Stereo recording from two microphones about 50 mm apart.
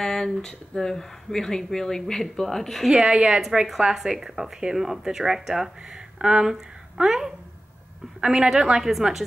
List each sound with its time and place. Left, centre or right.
0.0 s speech: centre
2.9 s a woman's voice: centre
3.9 s a woman's voice: centre